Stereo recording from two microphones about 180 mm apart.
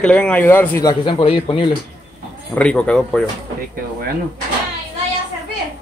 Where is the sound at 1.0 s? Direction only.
30° left (ahead or behind).